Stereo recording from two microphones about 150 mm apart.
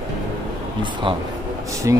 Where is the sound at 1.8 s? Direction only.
20° right (ahead or behind).